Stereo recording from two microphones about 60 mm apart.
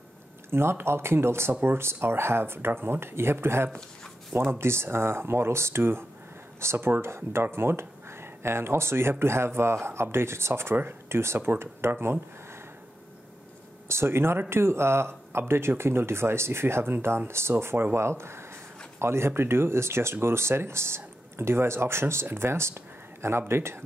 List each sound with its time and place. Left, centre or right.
0.5 s speech: right
13.8 s speech: right